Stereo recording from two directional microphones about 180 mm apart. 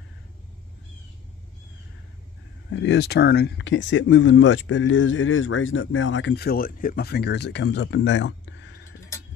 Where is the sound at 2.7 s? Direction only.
80° left.